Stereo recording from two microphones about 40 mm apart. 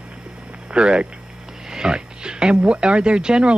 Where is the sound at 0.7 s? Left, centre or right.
Right.